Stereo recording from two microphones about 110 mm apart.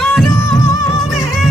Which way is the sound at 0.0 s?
5° left (ahead or behind).